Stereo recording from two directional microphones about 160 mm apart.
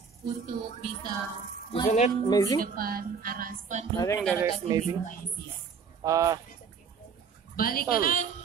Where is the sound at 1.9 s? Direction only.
45° left (ahead or behind).